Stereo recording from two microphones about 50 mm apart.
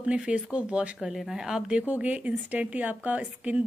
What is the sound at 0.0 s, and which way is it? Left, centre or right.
Speech, centre.